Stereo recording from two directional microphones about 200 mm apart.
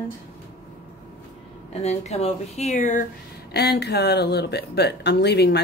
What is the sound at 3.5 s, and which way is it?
Speech, 55° left (ahead or behind).